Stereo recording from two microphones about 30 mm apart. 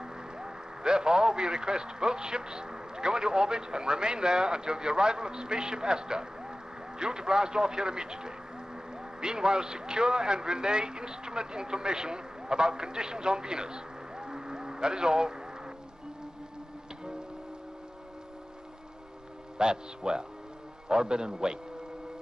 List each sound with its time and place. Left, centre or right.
0.0 s a man's voice: right
19.6 s a man's voice: right